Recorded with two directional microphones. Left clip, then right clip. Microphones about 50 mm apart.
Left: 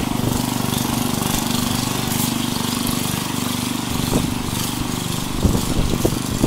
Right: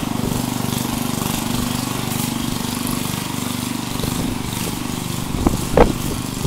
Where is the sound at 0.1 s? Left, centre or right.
Centre.